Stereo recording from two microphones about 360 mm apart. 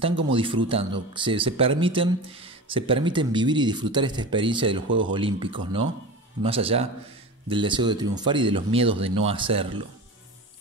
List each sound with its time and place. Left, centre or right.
0.0 s speech: centre
4.8 s speech: right
5.1 s speech: centre